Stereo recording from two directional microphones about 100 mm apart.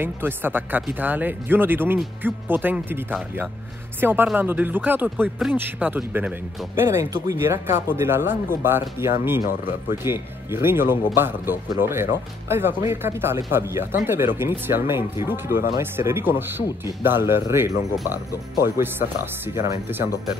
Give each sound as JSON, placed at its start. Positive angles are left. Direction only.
{"t": 0.0, "sound": "speech", "side_deg": -20}